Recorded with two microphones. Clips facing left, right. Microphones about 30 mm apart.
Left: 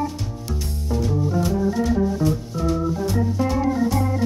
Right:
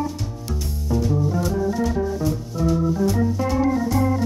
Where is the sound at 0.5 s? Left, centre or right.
Centre.